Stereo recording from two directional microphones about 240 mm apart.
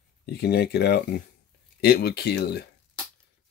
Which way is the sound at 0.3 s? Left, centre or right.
Left.